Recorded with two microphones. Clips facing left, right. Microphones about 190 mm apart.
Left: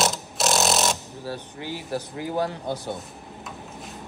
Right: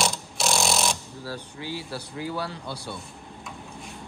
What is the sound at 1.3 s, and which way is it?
Speech, 15° left (ahead or behind).